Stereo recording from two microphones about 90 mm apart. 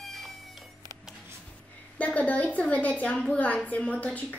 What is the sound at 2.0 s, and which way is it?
A woman's voice, 15° left (ahead or behind).